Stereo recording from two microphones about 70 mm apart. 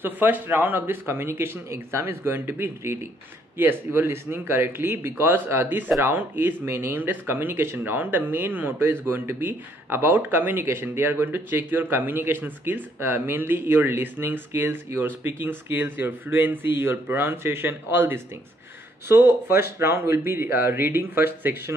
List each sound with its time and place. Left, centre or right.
0.0 s a man's voice: right